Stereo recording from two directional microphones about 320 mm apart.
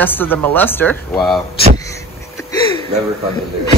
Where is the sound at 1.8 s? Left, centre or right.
Centre.